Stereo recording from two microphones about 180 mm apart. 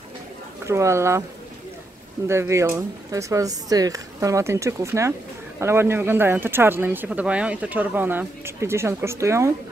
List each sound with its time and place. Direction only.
0.7 s speech: 15° right (ahead or behind)
2.2 s speech: 15° right (ahead or behind)